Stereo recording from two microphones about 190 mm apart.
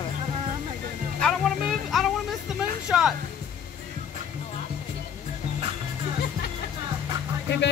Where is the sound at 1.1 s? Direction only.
5° left (ahead or behind).